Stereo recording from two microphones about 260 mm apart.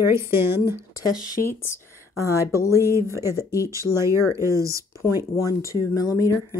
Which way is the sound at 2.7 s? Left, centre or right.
Centre.